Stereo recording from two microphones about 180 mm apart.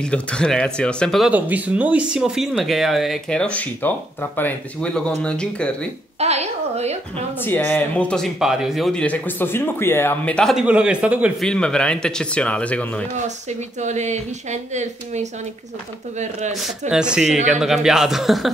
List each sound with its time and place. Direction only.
0.0 s speech: 5° left (ahead or behind)
1.3 s speech: 10° right (ahead or behind)
6.1 s speech: 35° right (ahead or behind)
7.3 s speech: 10° left (ahead or behind); by 11.4 s 10° right (ahead or behind)
11.4 s speech: 5° left (ahead or behind)
13.5 s speech: 40° right (ahead or behind)
16.9 s speech: 5° right (ahead or behind)